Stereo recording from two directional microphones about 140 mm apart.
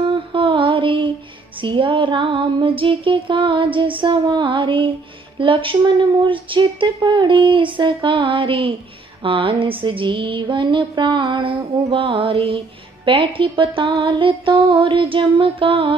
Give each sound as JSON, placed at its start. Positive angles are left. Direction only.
{"t": 0.1, "sound": "mantra", "side_deg": -35}
{"t": 1.6, "sound": "music", "side_deg": -35}